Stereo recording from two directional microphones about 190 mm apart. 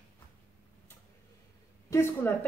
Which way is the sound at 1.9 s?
15° left (ahead or behind).